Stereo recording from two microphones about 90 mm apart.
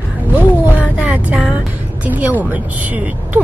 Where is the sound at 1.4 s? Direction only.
15° right (ahead or behind).